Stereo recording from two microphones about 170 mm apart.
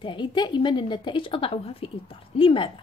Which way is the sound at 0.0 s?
30° left (ahead or behind).